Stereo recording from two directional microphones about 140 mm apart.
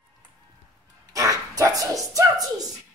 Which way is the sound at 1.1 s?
25° right (ahead or behind).